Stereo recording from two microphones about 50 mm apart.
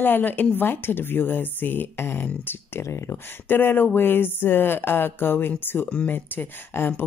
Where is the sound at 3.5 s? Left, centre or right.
Left.